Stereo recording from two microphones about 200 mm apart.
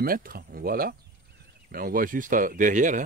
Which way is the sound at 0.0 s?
45° right (ahead or behind).